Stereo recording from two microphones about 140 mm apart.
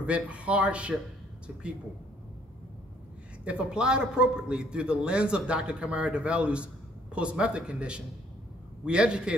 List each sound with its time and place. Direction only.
0.0 s a man's voice: 10° right (ahead or behind)
3.4 s a man's voice: 5° right (ahead or behind)